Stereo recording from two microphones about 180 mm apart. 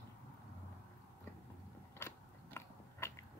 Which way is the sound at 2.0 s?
15° left (ahead or behind).